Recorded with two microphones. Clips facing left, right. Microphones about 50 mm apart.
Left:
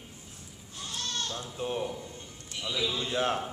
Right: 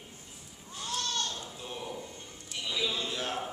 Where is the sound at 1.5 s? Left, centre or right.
Left.